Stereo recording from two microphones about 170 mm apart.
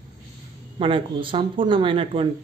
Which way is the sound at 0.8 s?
30° right (ahead or behind).